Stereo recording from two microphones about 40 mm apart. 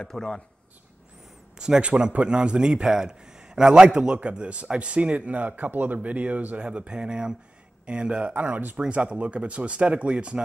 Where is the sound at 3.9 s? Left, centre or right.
Right.